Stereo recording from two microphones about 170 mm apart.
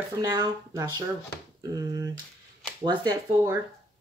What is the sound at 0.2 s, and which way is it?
Speech, 20° right (ahead or behind).